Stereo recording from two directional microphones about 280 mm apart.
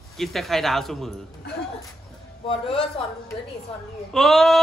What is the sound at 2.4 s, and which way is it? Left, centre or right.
Speech, centre.